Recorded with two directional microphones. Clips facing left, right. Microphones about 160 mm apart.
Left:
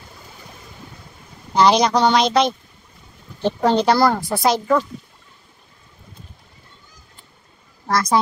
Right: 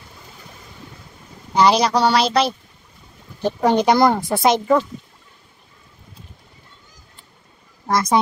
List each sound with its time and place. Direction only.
1.6 s speech: 5° right (ahead or behind)
7.8 s speech: 20° right (ahead or behind)